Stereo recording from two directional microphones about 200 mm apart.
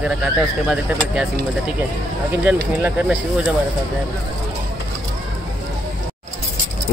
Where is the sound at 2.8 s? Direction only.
10° right (ahead or behind).